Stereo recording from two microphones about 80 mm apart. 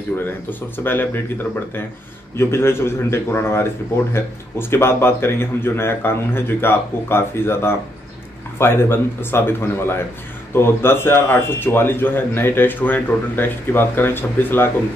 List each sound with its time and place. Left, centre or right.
0.2 s speech: left